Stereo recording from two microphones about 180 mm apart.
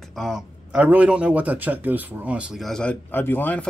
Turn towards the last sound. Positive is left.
turn(degrees=10)  # may be behind; listen again after turning